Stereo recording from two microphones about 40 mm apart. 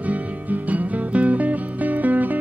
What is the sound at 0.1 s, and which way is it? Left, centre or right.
Music, right.